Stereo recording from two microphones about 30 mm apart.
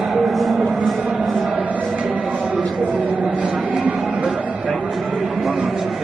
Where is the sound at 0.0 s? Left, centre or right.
Centre.